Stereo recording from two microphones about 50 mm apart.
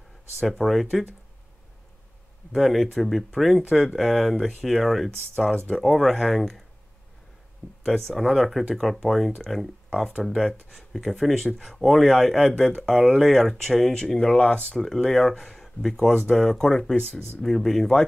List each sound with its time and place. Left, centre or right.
0.4 s speech: centre
2.5 s speech: centre
7.8 s speech: centre
14.5 s speech: left
14.8 s speech: centre
16.9 s speech: left
17.4 s speech: centre